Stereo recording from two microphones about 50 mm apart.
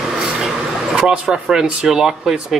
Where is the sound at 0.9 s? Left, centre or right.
Centre.